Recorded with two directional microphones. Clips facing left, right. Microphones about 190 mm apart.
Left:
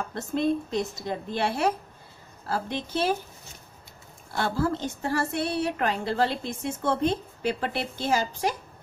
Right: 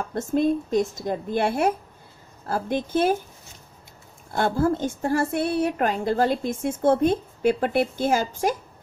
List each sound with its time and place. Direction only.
0.1 s a woman's voice: 45° right (ahead or behind)
4.3 s a woman's voice: 50° right (ahead or behind)